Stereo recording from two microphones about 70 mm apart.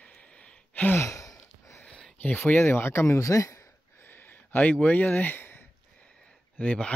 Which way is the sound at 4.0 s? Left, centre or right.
Left.